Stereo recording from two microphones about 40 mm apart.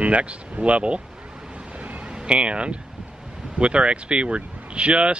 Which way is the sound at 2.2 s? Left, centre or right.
Right.